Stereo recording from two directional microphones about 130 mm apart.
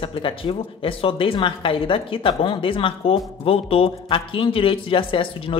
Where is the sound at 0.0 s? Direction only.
45° left (ahead or behind).